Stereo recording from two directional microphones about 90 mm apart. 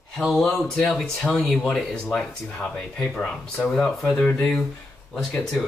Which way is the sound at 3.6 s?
5° left (ahead or behind).